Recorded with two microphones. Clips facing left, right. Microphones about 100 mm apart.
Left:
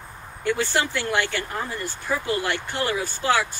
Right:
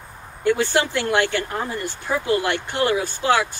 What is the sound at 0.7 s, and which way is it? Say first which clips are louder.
Speech: right 4 dB; 55° right (ahead or behind).